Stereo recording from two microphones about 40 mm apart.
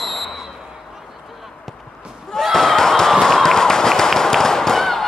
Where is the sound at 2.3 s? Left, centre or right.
Centre.